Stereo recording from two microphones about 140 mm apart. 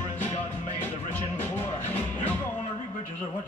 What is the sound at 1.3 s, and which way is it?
Music, 15° left (ahead or behind).